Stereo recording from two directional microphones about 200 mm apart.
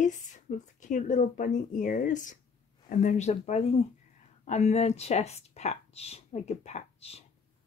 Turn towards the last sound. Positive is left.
turn(degrees=30)  # may be behind; listen again after turning